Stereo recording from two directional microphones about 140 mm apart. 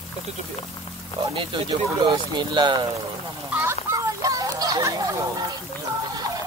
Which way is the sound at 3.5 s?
20° right (ahead or behind).